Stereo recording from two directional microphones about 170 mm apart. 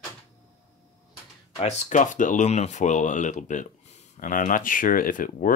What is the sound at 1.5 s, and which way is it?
Speech, 40° left (ahead or behind).